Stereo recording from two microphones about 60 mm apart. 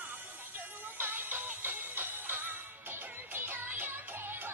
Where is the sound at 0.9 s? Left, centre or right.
Right.